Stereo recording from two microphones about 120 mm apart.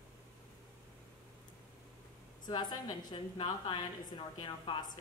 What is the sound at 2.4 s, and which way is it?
A woman's voice, 35° left (ahead or behind).